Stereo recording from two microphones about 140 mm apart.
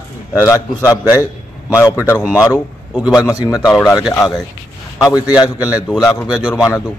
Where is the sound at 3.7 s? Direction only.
10° left (ahead or behind).